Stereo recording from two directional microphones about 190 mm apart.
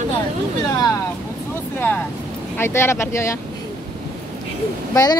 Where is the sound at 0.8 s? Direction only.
20° left (ahead or behind).